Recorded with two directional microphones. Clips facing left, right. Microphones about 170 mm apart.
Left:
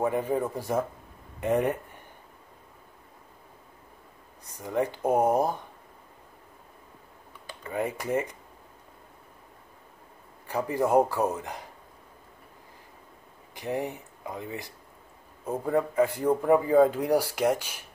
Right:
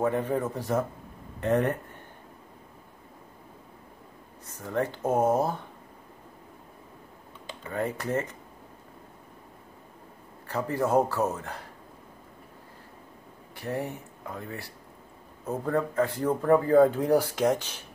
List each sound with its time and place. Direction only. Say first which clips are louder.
0.0 s a man's voice: even; 10° left (ahead or behind)
4.5 s a man's voice: left 1 dB; 15° left (ahead or behind)
7.7 s a man's voice: left 1 dB; 10° left (ahead or behind)
10.4 s a man's voice: left 1 dB; 15° left (ahead or behind)
13.6 s a man's voice: left 1 dB; 15° left (ahead or behind)